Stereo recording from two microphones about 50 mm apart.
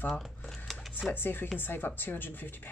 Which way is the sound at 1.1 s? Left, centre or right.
Left.